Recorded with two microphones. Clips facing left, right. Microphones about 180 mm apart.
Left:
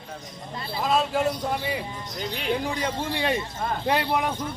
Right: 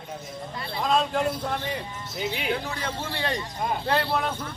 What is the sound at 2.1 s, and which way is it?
Speech, 5° right (ahead or behind).